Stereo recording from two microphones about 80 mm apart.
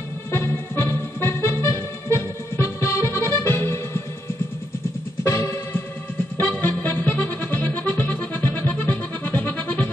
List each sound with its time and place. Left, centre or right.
0.3 s music: left
5.2 s music: left
6.3 s music: left